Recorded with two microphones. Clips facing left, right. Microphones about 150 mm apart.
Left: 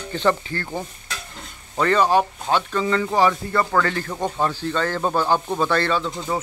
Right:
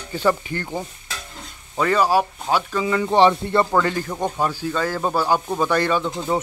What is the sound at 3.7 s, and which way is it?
Speech, 15° right (ahead or behind).